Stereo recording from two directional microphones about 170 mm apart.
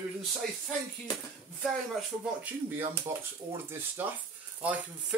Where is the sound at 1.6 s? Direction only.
Centre (ahead or behind).